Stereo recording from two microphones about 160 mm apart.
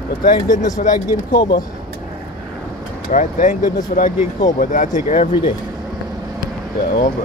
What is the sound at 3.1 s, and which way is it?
Speech, 55° left (ahead or behind).